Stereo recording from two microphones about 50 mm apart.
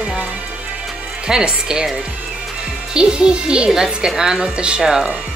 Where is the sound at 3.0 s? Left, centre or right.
Centre.